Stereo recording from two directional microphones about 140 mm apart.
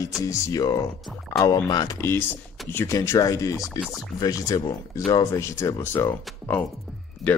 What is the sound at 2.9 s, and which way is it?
Speech, 25° left (ahead or behind).